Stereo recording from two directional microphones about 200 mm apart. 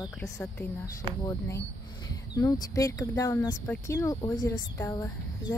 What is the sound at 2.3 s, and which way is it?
Speech, 15° left (ahead or behind).